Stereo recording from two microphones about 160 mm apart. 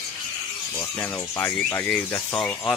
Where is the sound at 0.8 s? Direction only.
15° left (ahead or behind).